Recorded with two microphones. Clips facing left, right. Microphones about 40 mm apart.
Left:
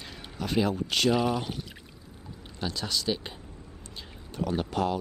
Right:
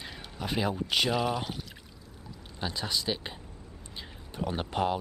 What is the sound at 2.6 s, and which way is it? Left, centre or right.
Speech, centre.